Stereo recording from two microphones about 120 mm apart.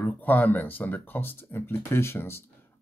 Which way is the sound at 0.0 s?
15° left (ahead or behind).